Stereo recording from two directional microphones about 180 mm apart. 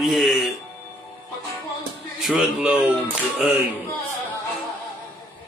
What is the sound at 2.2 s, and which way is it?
Music, 5° right (ahead or behind).